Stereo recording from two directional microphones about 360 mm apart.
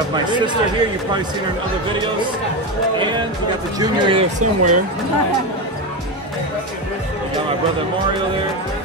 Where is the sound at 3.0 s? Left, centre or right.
Centre.